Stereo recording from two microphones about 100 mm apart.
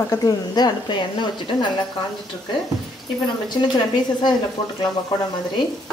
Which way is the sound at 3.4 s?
45° left (ahead or behind).